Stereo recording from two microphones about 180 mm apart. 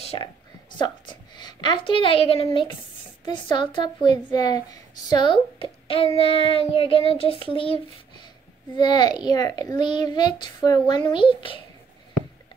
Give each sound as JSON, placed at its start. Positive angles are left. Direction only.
{"t": 0.0, "sound": "a woman's voice", "side_deg": 30}